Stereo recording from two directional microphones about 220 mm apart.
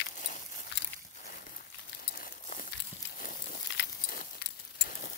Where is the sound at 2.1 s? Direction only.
40° left (ahead or behind).